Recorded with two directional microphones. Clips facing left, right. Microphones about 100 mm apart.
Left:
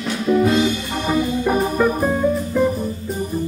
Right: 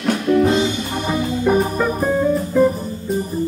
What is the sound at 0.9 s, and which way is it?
Music, centre (ahead or behind).